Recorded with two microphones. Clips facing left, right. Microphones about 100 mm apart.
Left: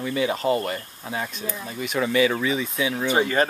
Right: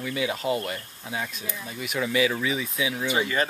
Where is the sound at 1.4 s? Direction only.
40° left (ahead or behind).